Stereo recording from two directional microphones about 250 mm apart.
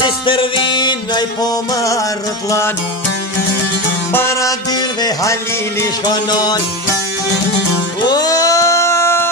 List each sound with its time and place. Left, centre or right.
0.0 s music: centre
4.1 s music: centre
8.1 s a sound: centre